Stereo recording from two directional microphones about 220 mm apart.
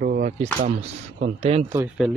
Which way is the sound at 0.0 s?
35° right (ahead or behind).